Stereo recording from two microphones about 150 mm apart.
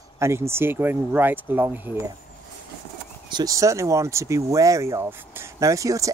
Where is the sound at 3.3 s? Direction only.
25° right (ahead or behind).